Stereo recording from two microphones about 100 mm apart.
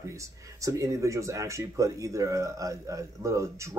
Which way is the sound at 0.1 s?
30° right (ahead or behind).